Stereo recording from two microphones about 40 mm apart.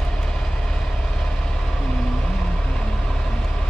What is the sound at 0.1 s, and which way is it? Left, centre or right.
Vehicle, centre.